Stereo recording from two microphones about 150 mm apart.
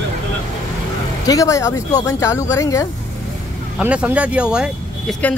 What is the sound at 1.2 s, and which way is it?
Speech, 20° left (ahead or behind).